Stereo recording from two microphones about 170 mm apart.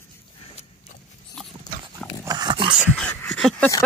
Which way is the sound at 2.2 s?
25° right (ahead or behind).